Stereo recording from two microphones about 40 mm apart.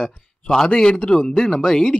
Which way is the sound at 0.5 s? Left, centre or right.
Centre.